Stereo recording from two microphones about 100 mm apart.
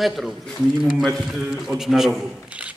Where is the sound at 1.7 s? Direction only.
5° right (ahead or behind).